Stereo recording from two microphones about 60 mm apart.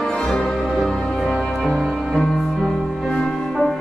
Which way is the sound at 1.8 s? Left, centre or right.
Centre.